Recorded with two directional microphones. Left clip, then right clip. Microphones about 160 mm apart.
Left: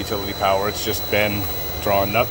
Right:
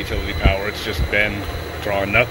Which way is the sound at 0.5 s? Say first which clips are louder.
Left 2 dB; 15° left (ahead or behind).